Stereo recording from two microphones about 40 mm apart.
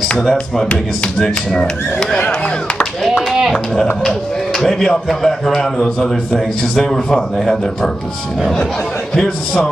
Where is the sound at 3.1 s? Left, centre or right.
Centre.